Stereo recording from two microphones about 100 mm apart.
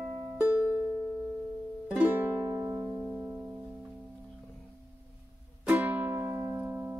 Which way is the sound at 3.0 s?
10° right (ahead or behind).